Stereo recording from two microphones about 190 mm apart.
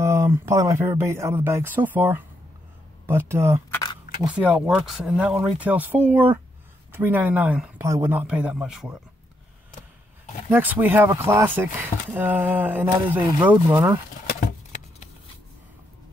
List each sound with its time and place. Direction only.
0.0 s speech: 15° right (ahead or behind)
10.5 s speech: 10° right (ahead or behind)